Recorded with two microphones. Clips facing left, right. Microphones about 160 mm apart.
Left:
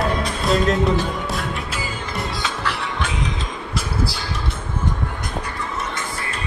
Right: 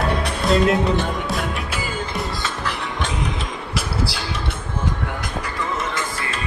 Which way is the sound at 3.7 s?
75° right (ahead or behind).